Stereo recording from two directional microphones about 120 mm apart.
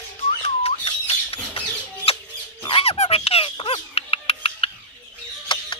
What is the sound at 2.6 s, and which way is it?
Squeak, 50° left (ahead or behind).